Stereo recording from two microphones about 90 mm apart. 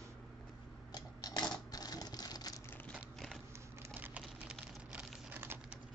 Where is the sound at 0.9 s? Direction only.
45° left (ahead or behind).